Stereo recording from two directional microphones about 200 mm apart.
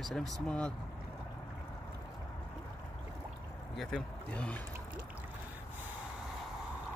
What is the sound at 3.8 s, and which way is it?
Speech, 5° left (ahead or behind).